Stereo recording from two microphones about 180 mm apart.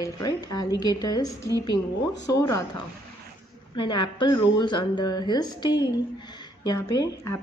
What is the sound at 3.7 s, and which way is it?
A woman's voice, 25° left (ahead or behind).